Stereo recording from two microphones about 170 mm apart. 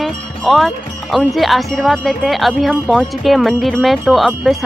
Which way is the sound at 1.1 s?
Centre (ahead or behind).